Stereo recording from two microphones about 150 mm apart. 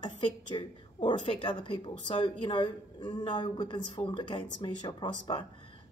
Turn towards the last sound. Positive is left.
turn(degrees=30)  # may be behind; listen again after turning